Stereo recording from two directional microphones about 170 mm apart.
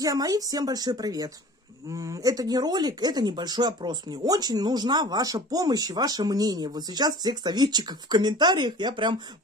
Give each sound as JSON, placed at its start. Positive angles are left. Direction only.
{"t": 0.0, "sound": "speech", "side_deg": -20}